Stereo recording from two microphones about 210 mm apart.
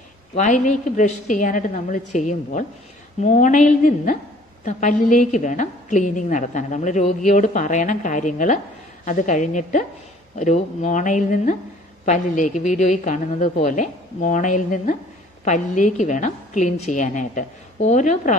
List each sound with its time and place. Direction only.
0.3 s a woman's voice: 35° left (ahead or behind)